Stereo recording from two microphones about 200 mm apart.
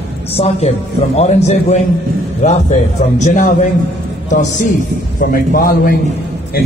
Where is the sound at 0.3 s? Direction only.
30° left (ahead or behind).